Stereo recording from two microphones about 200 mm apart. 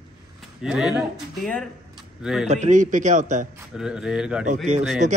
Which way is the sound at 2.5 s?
35° right (ahead or behind).